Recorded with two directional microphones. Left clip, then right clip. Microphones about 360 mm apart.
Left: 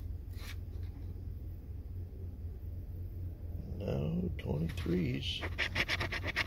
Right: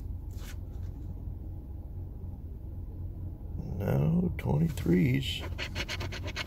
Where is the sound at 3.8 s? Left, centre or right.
Right.